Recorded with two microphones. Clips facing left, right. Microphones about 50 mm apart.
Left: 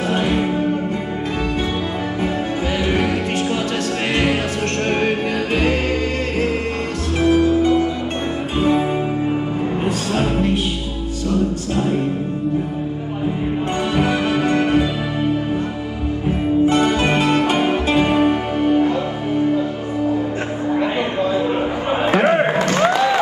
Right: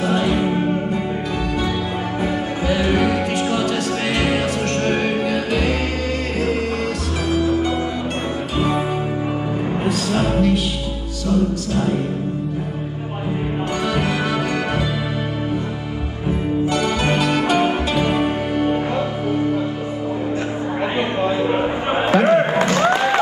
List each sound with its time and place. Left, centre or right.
0.1 s music: left
3.1 s music: right
4.8 s music: left
7.2 s music: left
9.8 s music: left
13.9 s music: left
16.3 s music: left
21.2 s a sound: right
22.0 s a sound: left
22.8 s music: right